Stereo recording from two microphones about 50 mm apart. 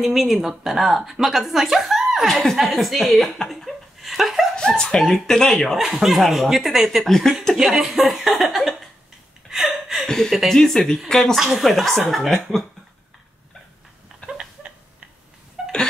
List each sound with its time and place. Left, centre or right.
0.0 s speech: centre
2.2 s speech: centre
3.4 s laughter: centre
4.6 s dog: centre
5.1 s speech: centre
7.5 s speech: centre
9.5 s a sound: centre
10.0 s speech: centre
11.3 s speech: centre
14.3 s a sound: right
15.6 s a sound: centre